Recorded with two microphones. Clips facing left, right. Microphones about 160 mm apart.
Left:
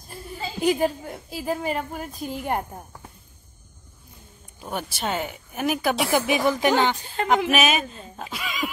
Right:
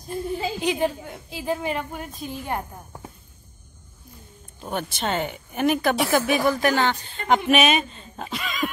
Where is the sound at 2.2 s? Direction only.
55° left (ahead or behind).